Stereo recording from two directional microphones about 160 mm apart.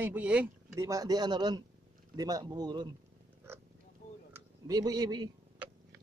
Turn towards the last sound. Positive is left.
turn(degrees=-25)  # may be behind; listen again after turning